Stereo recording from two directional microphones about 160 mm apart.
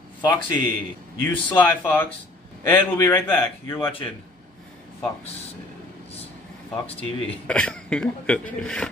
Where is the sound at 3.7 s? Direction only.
35° left (ahead or behind).